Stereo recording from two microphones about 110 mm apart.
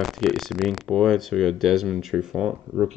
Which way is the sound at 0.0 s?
Centre (ahead or behind).